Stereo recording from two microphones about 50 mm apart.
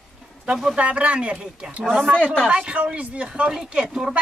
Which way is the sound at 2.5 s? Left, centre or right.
Right.